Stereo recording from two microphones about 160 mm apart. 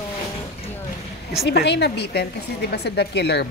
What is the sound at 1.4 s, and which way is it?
A woman's voice, 90° left.